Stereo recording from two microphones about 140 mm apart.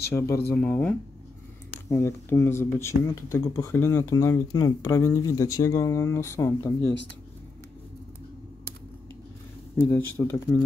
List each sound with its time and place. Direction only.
0.1 s speech: 10° left (ahead or behind)
1.9 s speech: 20° left (ahead or behind)
9.8 s speech: 15° left (ahead or behind)